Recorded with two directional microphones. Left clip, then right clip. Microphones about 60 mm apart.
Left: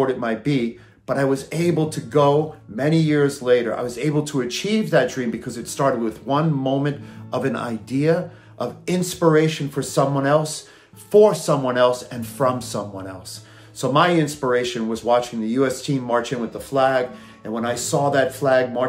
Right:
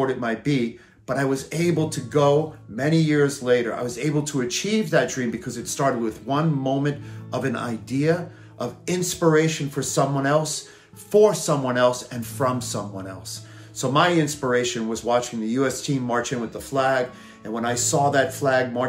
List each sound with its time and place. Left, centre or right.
0.0 s speech: left